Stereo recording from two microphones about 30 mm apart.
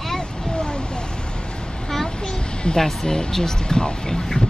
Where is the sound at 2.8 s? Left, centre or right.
Centre.